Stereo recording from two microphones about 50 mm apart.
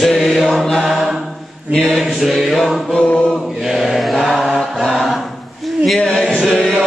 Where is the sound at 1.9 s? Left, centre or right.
Centre.